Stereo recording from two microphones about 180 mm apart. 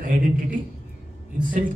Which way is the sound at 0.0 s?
45° right (ahead or behind).